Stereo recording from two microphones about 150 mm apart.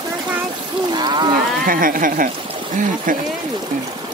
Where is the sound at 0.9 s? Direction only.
30° right (ahead or behind).